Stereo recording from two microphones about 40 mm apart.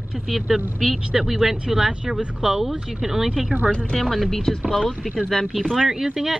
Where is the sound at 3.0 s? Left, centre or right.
Centre.